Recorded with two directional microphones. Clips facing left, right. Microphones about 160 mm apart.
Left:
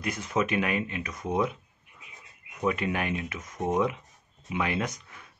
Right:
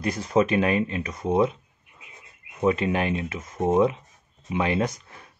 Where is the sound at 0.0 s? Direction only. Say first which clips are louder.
Right 6 dB; 35° right (ahead or behind).